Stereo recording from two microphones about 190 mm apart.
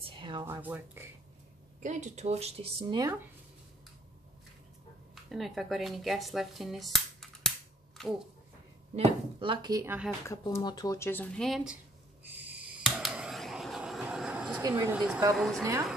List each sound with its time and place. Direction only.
0.0 s a sound: 25° right (ahead or behind)
0.6 s speech: 10° right (ahead or behind)
1.8 s speech: 40° right (ahead or behind)
5.1 s speech: centre (ahead or behind)
8.9 s speech: 30° right (ahead or behind)
10.2 s speech: 15° left (ahead or behind)
12.3 s a sound: 5° right (ahead or behind)
14.7 s a woman's voice: 10° right (ahead or behind)